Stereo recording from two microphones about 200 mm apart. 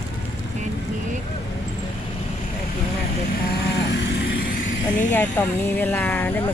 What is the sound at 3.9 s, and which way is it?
Vehicle, 60° left (ahead or behind).